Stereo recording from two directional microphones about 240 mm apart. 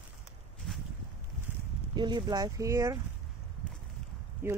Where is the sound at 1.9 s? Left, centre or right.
Centre.